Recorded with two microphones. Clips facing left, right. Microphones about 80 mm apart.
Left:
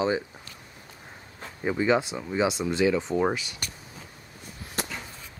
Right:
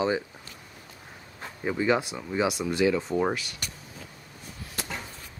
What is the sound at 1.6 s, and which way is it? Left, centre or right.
Speech, centre.